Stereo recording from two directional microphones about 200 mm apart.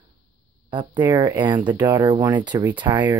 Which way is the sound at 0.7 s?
20° right (ahead or behind).